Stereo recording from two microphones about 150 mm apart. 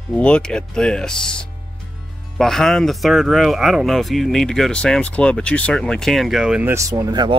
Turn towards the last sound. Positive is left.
turn(degrees=-25)  # may be behind; listen again after turning